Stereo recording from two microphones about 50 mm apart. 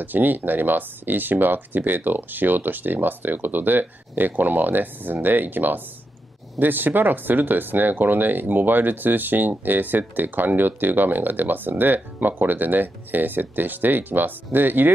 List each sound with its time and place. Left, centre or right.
0.0 s speech: right